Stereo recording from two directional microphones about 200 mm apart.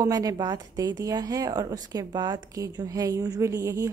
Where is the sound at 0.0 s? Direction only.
20° right (ahead or behind).